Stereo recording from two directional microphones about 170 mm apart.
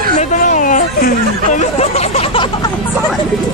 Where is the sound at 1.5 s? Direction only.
40° left (ahead or behind).